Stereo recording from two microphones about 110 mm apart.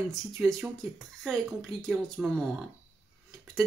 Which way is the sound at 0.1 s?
Centre (ahead or behind).